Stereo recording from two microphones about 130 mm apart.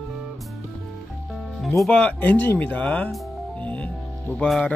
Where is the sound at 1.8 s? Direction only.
10° left (ahead or behind).